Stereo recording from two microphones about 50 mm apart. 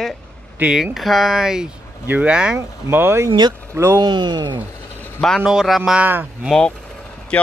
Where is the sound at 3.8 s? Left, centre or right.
Right.